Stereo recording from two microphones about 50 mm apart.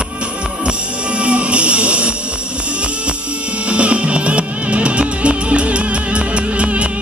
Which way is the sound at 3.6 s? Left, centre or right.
Right.